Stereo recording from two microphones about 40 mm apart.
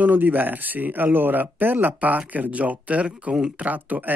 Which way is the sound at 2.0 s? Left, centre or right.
Right.